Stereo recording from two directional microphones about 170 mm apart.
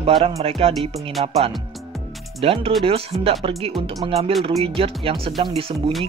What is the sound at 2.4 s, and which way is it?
Speech, 35° right (ahead or behind).